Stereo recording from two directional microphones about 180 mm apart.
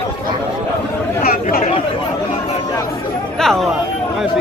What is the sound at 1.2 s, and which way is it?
Chatter, 55° left (ahead or behind).